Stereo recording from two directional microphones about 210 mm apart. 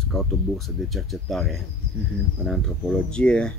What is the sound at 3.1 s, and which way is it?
Speech, 5° left (ahead or behind).